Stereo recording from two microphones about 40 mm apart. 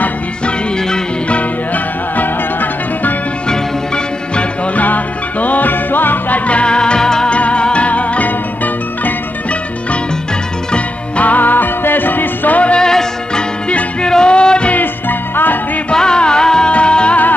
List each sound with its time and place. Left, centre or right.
2.1 s music: left
3.4 s music: left
4.7 s music: left; by 7.2 s centre
7.2 s music: left
10.7 s music: left
11.3 s music: left
12.7 s music: centre
14.7 s music: left
15.9 s music: centre